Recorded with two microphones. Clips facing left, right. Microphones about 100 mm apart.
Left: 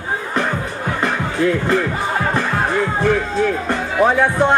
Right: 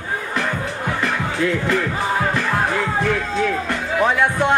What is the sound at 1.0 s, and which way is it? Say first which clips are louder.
Music: left 4 dB; 35° left (ahead or behind).